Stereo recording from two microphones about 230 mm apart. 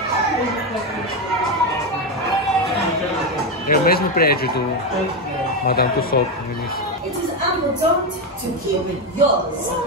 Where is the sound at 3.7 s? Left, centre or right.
Left.